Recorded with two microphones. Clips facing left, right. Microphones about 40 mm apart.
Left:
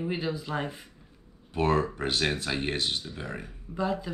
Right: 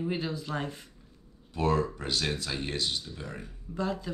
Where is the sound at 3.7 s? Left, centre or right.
Centre.